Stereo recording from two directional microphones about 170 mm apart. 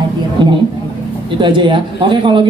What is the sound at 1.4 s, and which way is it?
A woman's voice, 30° right (ahead or behind).